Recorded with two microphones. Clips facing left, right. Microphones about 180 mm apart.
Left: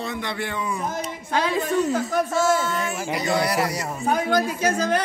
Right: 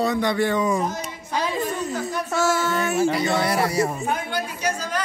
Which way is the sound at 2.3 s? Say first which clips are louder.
Right 3 dB; 70° right (ahead or behind).